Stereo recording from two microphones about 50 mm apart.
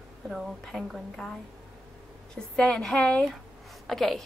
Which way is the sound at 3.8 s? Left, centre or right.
Centre.